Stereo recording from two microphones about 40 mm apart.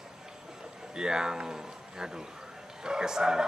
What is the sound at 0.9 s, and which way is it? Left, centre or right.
Speech, centre.